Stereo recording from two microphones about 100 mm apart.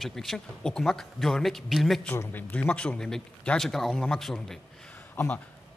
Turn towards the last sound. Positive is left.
turn(degrees=15)  # may be behind; listen again after turning